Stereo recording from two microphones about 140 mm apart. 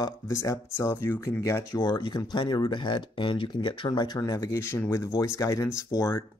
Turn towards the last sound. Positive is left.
turn(degrees=25)  # may be behind; listen again after turning